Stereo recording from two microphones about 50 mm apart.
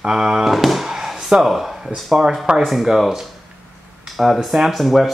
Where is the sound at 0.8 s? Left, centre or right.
Centre.